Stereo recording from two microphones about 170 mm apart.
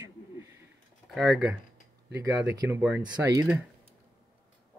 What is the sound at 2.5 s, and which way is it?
Speech, 20° right (ahead or behind).